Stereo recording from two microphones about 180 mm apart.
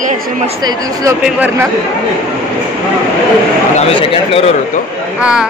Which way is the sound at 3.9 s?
30° left (ahead or behind).